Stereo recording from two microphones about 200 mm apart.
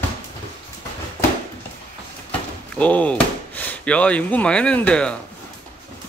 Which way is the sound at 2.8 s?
5° left (ahead or behind).